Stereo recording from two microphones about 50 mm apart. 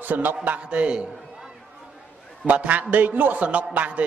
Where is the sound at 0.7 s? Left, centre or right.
Right.